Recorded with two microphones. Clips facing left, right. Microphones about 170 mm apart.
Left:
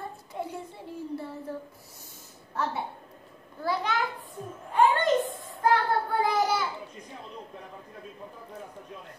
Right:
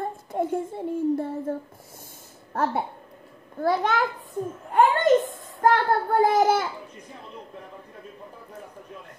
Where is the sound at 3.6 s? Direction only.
50° right (ahead or behind).